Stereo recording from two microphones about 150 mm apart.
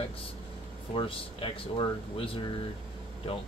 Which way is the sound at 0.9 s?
35° left (ahead or behind).